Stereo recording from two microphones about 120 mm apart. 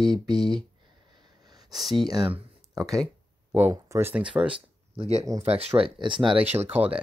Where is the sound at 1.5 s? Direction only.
35° right (ahead or behind).